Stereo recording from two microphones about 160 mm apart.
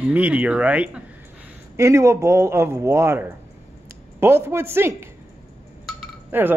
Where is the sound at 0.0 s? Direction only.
10° right (ahead or behind).